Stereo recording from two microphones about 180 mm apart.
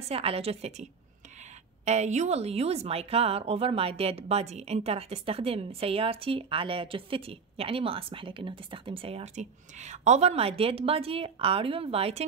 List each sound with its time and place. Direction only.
0.1 s a woman's voice: 35° right (ahead or behind)
1.9 s a woman's voice: 40° right (ahead or behind)